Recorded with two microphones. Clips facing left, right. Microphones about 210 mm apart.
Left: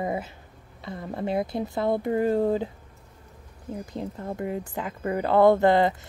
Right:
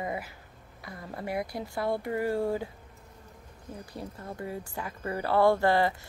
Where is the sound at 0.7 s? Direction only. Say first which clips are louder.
Left 7 dB; 25° left (ahead or behind).